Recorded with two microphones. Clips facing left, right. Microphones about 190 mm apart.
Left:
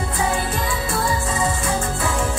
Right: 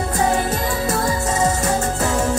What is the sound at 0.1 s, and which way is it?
Music, 40° right (ahead or behind).